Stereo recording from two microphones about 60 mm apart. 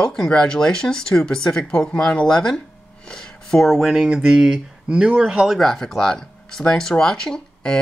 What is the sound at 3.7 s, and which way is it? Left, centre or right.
Speech, centre.